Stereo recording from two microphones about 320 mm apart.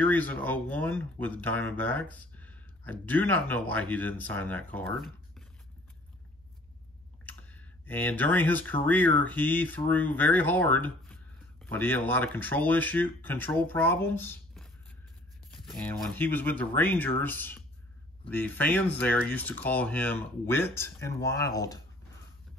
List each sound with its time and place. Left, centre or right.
0.0 s speech: centre
7.2 s speech: centre